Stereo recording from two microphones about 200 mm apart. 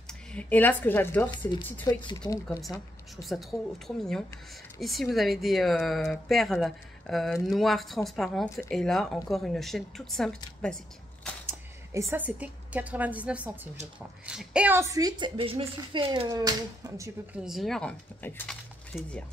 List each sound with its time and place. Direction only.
0.3 s a woman's voice: 5° left (ahead or behind)
1.3 s a woman's voice: 25° left (ahead or behind)
3.2 s speech: centre (ahead or behind)
8.5 s a woman's voice: 15° left (ahead or behind)
8.7 s speech: centre (ahead or behind)
12.1 s a woman's voice: 10° right (ahead or behind)
17.5 s speech: centre (ahead or behind)